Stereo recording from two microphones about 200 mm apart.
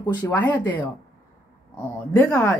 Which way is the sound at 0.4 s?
10° left (ahead or behind).